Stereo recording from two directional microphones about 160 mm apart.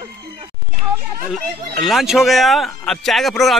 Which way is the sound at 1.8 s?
Centre (ahead or behind).